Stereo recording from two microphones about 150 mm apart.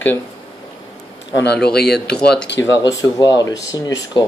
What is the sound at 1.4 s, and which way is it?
Speech, 90° left.